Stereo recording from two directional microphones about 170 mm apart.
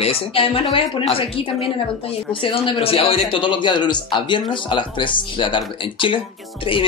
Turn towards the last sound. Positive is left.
turn(degrees=30)  # may be behind; listen again after turning